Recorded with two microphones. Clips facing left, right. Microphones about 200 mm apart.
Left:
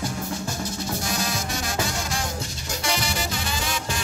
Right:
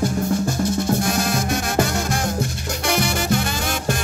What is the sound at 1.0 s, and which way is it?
Music, 55° right (ahead or behind).